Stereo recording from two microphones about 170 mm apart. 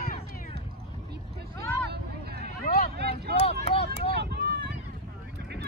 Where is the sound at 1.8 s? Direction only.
70° right (ahead or behind).